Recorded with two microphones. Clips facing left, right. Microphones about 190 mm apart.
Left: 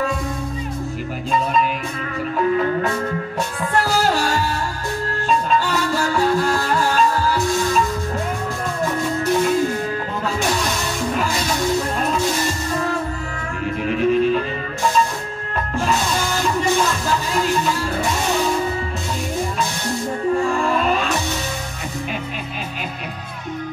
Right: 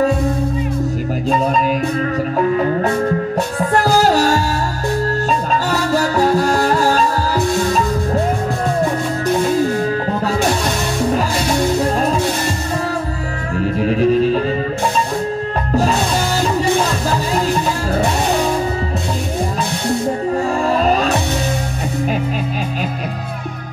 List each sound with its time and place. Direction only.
1.3 s music: 40° right (ahead or behind)
2.8 s music: 35° right (ahead or behind)
13.7 s music: 35° right (ahead or behind)
15.7 s music: 40° right (ahead or behind)
20.3 s music: 40° right (ahead or behind)